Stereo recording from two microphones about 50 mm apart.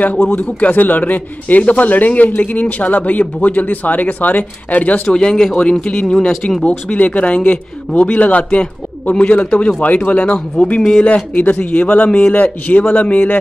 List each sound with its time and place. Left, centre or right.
0.3 s speech: left
5.1 s speech: centre; by 13.4 s left